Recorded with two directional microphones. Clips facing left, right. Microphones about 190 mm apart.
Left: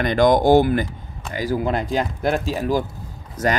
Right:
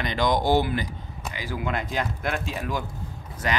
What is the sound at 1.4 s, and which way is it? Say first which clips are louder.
Speech: left 8 dB; 40° left (ahead or behind).